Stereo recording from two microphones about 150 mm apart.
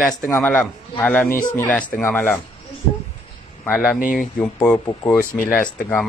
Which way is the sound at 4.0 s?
65° left (ahead or behind).